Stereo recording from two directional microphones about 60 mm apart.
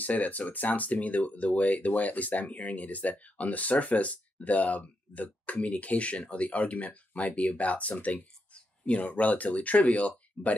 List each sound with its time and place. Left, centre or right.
0.0 s speech: left